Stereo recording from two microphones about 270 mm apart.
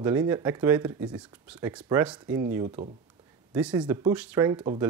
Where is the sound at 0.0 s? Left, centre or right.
Centre.